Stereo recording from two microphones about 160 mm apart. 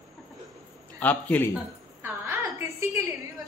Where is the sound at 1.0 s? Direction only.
10° left (ahead or behind).